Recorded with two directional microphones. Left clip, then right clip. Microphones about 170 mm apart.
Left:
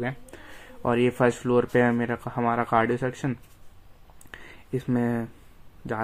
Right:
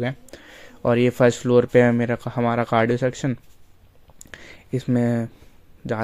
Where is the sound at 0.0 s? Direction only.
35° right (ahead or behind).